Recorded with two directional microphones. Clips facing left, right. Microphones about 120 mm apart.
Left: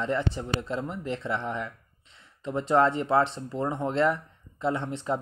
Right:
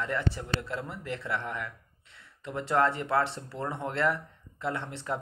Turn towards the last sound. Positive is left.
turn(degrees=20)  # may be behind; listen again after turning